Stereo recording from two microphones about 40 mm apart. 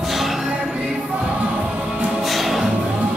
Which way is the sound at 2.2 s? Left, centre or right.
Centre.